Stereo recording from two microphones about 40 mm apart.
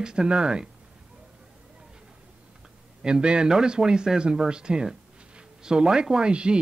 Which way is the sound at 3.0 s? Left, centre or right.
Right.